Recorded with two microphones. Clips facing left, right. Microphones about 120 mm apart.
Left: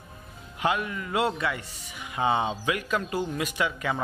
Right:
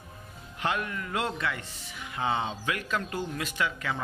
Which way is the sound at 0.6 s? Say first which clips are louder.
Left 3 dB; 10° left (ahead or behind).